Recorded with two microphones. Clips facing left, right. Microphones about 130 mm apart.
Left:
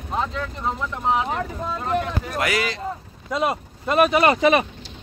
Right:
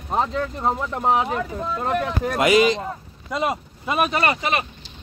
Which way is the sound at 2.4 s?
20° right (ahead or behind).